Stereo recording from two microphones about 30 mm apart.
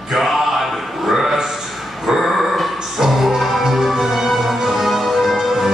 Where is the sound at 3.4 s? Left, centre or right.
Centre.